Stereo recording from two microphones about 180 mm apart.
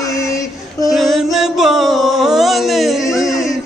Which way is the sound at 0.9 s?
Centre (ahead or behind).